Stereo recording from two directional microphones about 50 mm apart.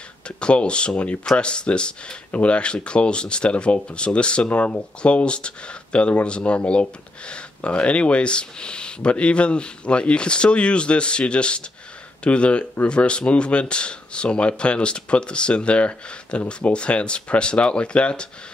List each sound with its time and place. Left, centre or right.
0.4 s speech: left
4.5 s speech: left